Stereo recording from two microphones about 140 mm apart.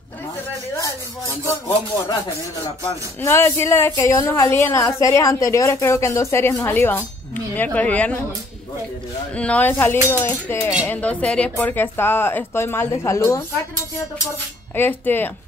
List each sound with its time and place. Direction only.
3.2 s a woman's voice: 15° left (ahead or behind)
9.3 s speech: 10° left (ahead or behind)
14.8 s speech: 15° left (ahead or behind)